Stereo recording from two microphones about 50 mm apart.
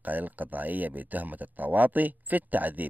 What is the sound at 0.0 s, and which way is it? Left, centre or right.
Speech, right.